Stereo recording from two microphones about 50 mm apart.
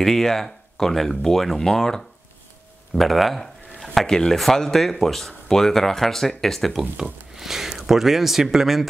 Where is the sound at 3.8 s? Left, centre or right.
Centre.